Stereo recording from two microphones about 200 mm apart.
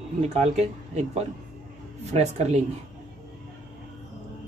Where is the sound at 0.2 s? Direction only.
30° right (ahead or behind).